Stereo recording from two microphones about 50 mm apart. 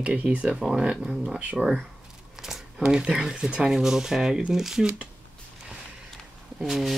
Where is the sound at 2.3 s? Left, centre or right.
Centre.